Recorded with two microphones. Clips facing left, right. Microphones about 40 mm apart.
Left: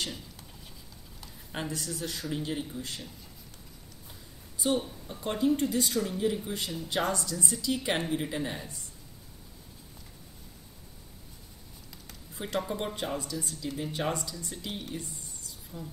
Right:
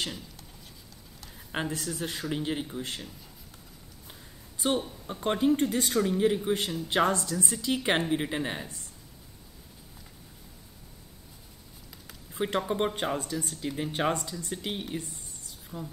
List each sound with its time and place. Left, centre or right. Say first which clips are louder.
1.5 s speech: right 3 dB; right
4.6 s a sound: right 1 dB; right
5.0 s speech: right 5 dB; right
12.4 s speech: right 5 dB; right
14.7 s speech: right 2 dB; right